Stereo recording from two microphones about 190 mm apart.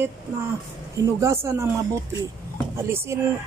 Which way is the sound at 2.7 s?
15° right (ahead or behind).